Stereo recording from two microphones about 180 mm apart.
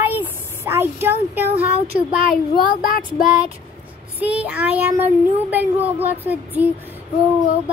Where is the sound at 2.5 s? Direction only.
55° left (ahead or behind).